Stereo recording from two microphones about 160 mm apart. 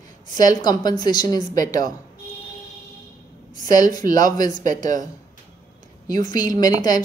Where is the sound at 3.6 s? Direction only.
25° left (ahead or behind).